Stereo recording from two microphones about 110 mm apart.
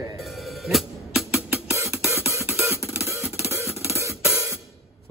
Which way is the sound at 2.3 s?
25° right (ahead or behind).